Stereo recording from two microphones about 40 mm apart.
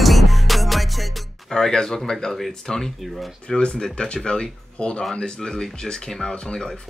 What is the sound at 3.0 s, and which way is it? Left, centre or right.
Speech, centre.